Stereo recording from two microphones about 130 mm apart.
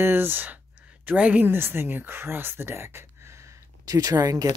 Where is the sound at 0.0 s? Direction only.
15° right (ahead or behind).